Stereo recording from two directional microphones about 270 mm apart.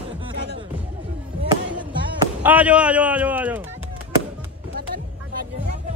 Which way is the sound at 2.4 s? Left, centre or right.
Centre.